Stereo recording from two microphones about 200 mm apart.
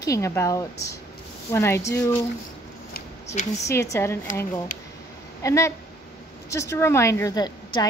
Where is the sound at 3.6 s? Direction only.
15° left (ahead or behind).